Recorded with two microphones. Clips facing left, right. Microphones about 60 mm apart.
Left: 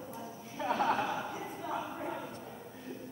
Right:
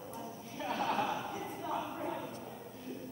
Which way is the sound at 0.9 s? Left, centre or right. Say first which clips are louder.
Even; centre.